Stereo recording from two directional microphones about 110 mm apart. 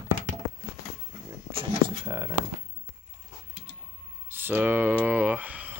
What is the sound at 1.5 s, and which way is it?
Speech, 55° right (ahead or behind).